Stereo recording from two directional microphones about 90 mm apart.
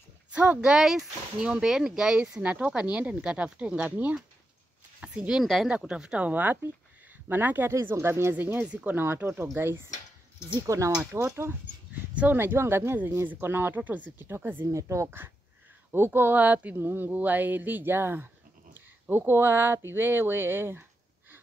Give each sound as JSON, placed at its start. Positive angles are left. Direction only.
{"t": 0.3, "sound": "speech", "side_deg": -15}
{"t": 5.4, "sound": "speech", "side_deg": 0}
{"t": 11.9, "sound": "speech", "side_deg": -15}
{"t": 14.7, "sound": "speech", "side_deg": -35}